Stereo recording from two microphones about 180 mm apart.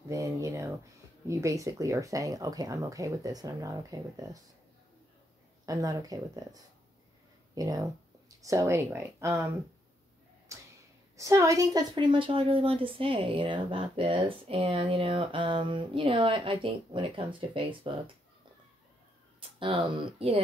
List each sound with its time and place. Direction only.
0.1 s a woman's voice: 20° right (ahead or behind)
5.7 s a woman's voice: 20° right (ahead or behind)
10.5 s a sound: 15° right (ahead or behind)
11.1 s a woman's voice: 15° right (ahead or behind)
19.6 s speech: 30° right (ahead or behind)